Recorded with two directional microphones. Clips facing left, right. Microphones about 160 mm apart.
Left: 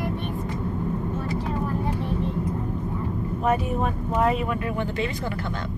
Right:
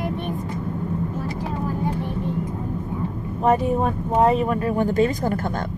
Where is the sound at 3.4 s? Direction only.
35° right (ahead or behind).